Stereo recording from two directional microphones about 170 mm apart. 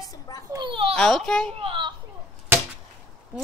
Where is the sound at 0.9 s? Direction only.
5° left (ahead or behind).